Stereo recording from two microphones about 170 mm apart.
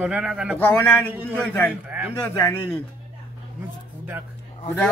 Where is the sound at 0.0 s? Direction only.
5° right (ahead or behind).